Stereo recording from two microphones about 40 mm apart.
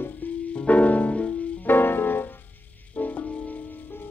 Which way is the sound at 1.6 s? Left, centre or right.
Left.